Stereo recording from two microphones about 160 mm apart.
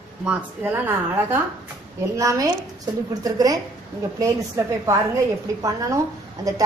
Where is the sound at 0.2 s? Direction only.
10° right (ahead or behind).